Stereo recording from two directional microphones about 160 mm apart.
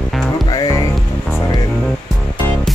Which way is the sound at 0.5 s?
25° left (ahead or behind).